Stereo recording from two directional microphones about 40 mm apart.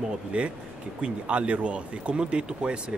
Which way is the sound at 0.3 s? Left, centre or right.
Right.